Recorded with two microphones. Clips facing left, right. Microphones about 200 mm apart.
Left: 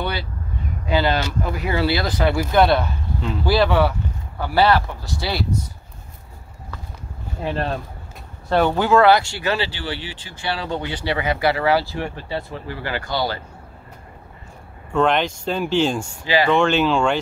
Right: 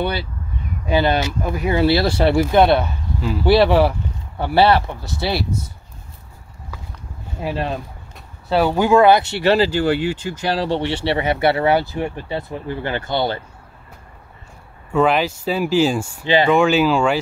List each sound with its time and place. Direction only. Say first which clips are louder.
0.8 s speech: right 2 dB; 20° right (ahead or behind)
2.8 s speech: right 2 dB; 5° right (ahead or behind)
3.4 s speech: right 4 dB; 25° right (ahead or behind)
7.4 s speech: right 1 dB; 5° right (ahead or behind); by 9.5 s 20° right (ahead or behind)
9.5 s speech: right 9 dB; 40° right (ahead or behind); by 13.4 s 25° right (ahead or behind)
14.9 s speech: right 2 dB; 5° right (ahead or behind)